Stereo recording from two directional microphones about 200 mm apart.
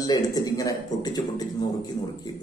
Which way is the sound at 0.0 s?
20° left (ahead or behind).